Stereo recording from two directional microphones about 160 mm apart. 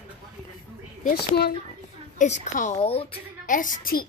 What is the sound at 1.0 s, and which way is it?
Speech, 55° left (ahead or behind).